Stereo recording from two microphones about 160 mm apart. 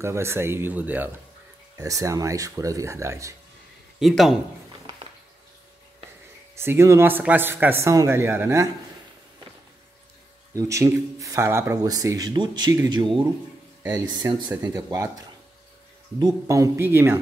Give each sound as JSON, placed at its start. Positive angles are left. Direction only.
{"t": 0.0, "sound": "speech", "side_deg": -15}
{"t": 1.8, "sound": "speech", "side_deg": -20}
{"t": 4.0, "sound": "a man's voice", "side_deg": 0}
{"t": 6.5, "sound": "speech", "side_deg": -15}
{"t": 10.5, "sound": "speech", "side_deg": -20}